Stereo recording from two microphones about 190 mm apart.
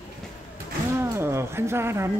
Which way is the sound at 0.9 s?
10° right (ahead or behind).